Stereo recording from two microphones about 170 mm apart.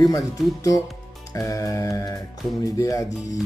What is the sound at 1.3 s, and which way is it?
Music, 20° left (ahead or behind).